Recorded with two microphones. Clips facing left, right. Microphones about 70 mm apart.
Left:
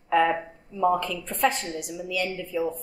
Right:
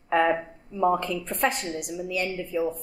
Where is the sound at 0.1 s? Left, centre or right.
Right.